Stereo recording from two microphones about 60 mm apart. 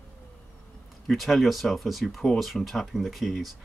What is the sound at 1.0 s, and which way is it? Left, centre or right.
Speech, centre.